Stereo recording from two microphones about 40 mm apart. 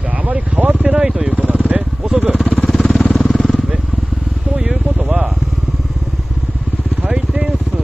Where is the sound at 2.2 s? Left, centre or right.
Right.